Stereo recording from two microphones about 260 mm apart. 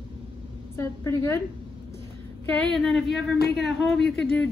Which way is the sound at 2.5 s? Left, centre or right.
Centre.